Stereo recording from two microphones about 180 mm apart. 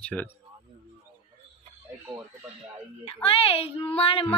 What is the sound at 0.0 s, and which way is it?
Speech, 10° left (ahead or behind).